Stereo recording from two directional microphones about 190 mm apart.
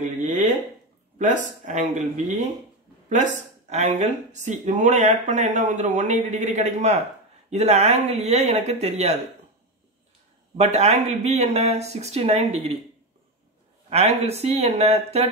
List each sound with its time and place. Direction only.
0.0 s a sound: 40° right (ahead or behind)
1.1 s speech: 40° right (ahead or behind)
10.6 s speech: 35° right (ahead or behind)
13.8 s speech: 35° right (ahead or behind)